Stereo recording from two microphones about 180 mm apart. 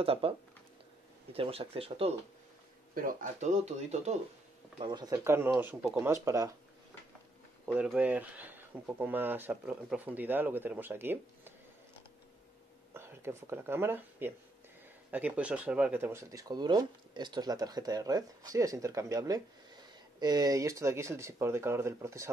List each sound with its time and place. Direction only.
0.0 s speech: 30° right (ahead or behind)
1.3 s speech: 30° right (ahead or behind)
2.9 s speech: 50° right (ahead or behind)
4.7 s speech: 25° right (ahead or behind)
5.1 s speech: 15° right (ahead or behind)
7.6 s speech: 5° right (ahead or behind)
12.9 s speech: 15° right (ahead or behind)